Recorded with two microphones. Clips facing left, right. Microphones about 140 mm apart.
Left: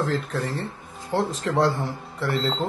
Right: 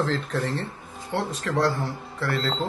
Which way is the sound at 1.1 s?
25° left (ahead or behind).